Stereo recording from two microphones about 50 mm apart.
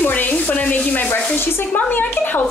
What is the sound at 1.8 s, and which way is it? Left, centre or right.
Stir, left.